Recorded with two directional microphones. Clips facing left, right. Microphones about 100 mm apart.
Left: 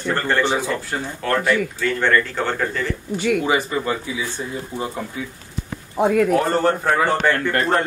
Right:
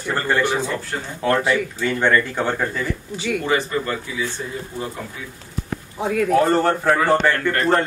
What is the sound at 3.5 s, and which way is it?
Speech, 10° left (ahead or behind).